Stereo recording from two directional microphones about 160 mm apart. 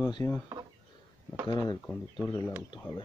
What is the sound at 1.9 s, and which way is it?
Speech, 5° left (ahead or behind).